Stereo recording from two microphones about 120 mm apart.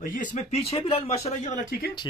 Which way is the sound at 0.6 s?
55° left (ahead or behind).